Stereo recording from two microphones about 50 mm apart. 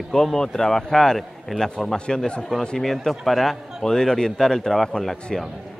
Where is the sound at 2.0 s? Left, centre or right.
Centre.